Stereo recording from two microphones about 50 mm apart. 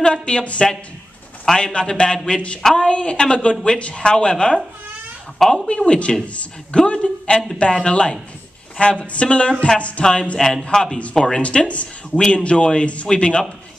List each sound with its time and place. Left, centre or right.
0.0 s speech: centre
1.4 s a man's voice: centre
2.9 s speech: left
5.4 s speech: centre
5.9 s a man's voice: left
11.4 s speech: left